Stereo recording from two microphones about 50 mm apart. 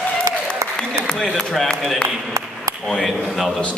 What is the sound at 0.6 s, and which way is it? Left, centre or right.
Applause, right.